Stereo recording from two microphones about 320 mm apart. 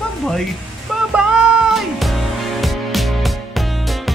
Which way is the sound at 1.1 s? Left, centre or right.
Centre.